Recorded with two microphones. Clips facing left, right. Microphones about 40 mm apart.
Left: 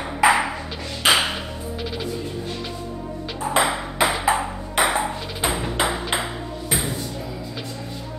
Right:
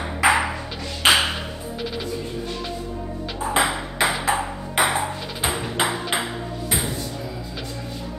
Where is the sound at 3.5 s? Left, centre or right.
Centre.